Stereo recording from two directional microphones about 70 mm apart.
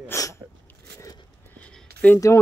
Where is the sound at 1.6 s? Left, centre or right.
Centre.